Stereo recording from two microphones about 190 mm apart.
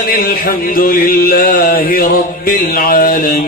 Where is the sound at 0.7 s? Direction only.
50° left (ahead or behind).